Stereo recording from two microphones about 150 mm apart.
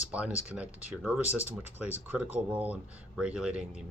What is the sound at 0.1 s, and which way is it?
Speech, 10° right (ahead or behind).